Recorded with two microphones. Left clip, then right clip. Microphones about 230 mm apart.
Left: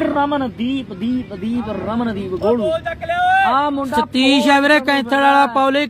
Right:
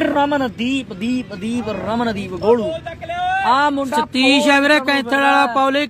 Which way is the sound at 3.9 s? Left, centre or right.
Centre.